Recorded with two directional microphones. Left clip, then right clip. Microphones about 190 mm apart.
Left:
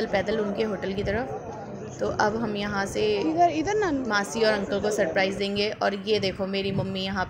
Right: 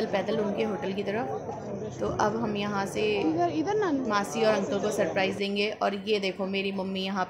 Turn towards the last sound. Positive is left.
turn(degrees=0)  # may be behind; listen again after turning